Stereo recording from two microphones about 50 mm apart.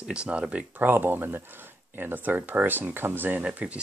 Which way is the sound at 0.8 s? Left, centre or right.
Right.